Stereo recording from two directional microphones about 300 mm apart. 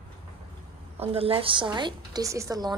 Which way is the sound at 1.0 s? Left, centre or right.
Centre.